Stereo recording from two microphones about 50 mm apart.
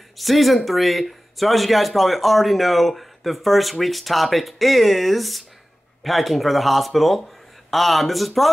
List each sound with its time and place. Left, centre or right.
0.2 s speech: centre